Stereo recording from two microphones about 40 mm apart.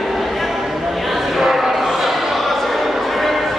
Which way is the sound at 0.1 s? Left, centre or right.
Centre.